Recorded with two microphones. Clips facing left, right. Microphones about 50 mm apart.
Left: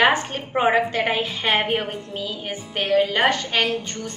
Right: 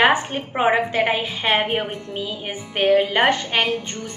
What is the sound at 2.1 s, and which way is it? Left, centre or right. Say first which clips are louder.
A woman's voice: right 1 dB; centre.